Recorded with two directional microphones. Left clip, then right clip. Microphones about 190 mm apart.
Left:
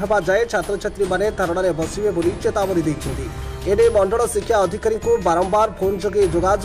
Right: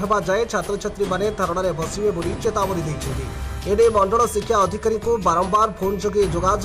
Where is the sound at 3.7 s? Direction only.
15° left (ahead or behind).